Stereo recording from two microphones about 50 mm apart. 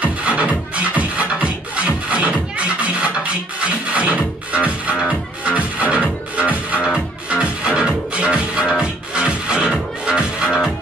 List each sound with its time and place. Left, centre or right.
0.0 s music: right
6.8 s music: centre